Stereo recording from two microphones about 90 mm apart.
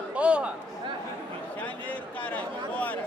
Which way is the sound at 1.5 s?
20° left (ahead or behind).